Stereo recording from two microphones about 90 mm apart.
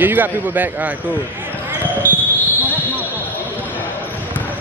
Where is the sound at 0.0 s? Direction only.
20° right (ahead or behind).